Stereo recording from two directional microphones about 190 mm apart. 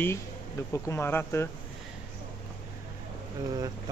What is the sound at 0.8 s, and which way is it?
Speech, 15° left (ahead or behind).